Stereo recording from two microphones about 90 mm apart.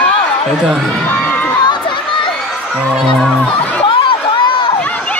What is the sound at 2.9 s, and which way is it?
Speech, centre (ahead or behind).